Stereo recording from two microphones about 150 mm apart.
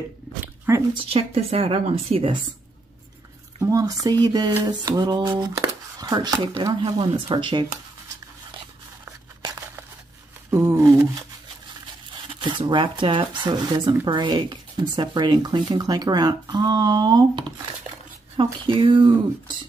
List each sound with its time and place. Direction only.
0.7 s speech: 15° right (ahead or behind)
1.1 s a woman's voice: 40° right (ahead or behind)
3.5 s speech: 20° right (ahead or behind)
10.5 s a sound: 20° right (ahead or behind)
12.1 s a woman's voice: 30° right (ahead or behind)